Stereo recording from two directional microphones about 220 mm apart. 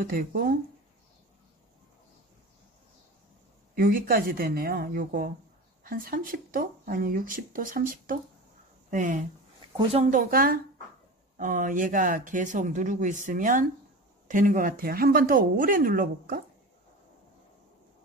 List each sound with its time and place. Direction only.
0.0 s speech: 40° right (ahead or behind)
3.7 s speech: 40° right (ahead or behind)